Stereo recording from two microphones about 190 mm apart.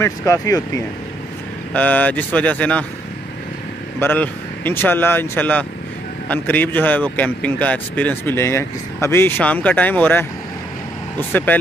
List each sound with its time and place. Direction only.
0.0 s a man's voice: 15° left (ahead or behind)
4.0 s a man's voice: 10° left (ahead or behind)